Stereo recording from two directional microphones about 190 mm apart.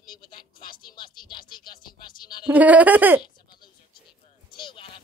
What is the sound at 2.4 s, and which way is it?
Speech, 10° right (ahead or behind).